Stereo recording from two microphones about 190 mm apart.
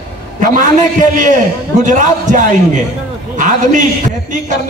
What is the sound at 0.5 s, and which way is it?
A man's voice, 45° right (ahead or behind).